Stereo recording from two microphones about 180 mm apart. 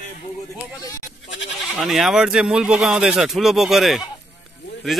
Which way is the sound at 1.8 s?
Centre (ahead or behind).